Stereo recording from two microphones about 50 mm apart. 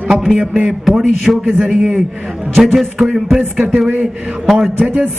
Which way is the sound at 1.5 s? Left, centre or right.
Centre.